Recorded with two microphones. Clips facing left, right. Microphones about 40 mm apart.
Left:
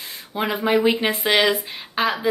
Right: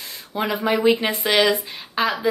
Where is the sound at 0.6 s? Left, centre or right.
Centre.